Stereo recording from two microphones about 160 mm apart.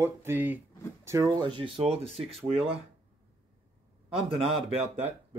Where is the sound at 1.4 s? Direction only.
30° right (ahead or behind).